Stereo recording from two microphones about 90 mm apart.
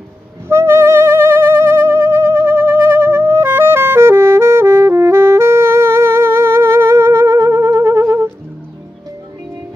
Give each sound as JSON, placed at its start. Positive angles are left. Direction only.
{"t": 0.5, "sound": "music", "side_deg": -30}